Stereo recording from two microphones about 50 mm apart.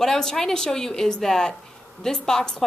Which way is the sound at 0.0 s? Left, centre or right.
Centre.